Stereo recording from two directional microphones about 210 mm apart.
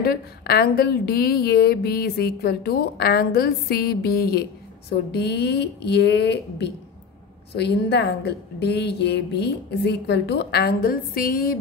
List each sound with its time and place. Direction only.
0.0 s a woman's voice: 45° left (ahead or behind)